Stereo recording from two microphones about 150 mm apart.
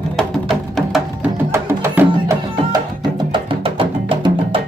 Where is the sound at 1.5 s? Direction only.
20° right (ahead or behind).